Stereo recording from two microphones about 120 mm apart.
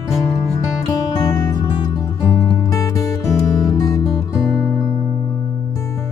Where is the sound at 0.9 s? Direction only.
30° left (ahead or behind).